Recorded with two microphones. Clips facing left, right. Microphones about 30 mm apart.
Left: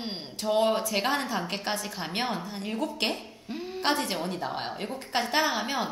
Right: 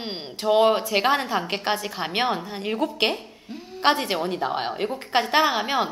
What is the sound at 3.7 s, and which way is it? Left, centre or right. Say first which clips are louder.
A woman's voice: right 7 dB; right.